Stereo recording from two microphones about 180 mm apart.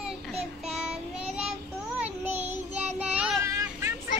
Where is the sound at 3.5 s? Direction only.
15° right (ahead or behind).